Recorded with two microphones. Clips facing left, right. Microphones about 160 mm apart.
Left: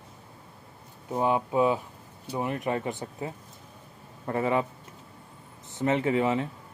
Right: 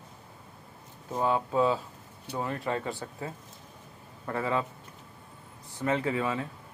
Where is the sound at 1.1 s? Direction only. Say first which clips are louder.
Left 2 dB; 15° left (ahead or behind).